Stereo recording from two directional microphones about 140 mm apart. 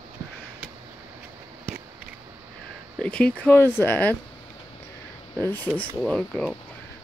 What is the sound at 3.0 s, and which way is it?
Speech, 5° left (ahead or behind).